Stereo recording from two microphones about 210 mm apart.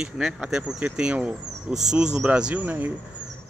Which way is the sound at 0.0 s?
5° right (ahead or behind).